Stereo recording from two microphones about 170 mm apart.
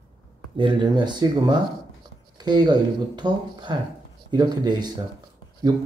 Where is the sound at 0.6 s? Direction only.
30° right (ahead or behind).